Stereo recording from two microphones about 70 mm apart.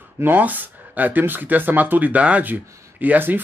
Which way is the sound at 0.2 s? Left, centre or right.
Right.